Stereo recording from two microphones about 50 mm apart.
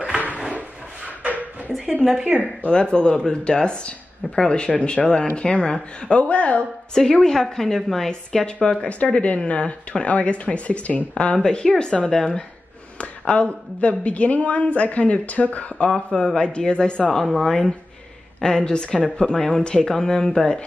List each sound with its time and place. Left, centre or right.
0.6 s a sound: right
2.2 s speech: right
2.7 s speech: centre
6.9 s speech: centre; by 11.3 s left
11.3 s speech: centre
13.3 s speech: left
15.9 s speech: centre
17.2 s speech: centre